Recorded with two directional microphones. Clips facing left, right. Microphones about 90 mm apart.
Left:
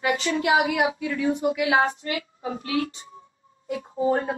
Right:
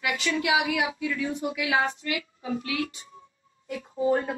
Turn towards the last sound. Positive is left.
turn(degrees=30)  # may be behind; listen again after turning